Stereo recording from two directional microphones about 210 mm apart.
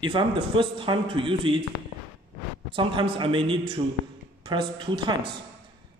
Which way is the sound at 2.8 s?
25° right (ahead or behind).